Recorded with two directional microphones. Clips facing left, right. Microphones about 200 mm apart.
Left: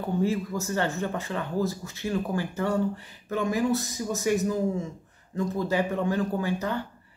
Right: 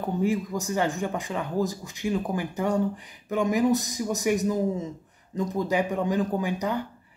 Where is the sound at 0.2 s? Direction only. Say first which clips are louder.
Right 2 dB; 15° right (ahead or behind).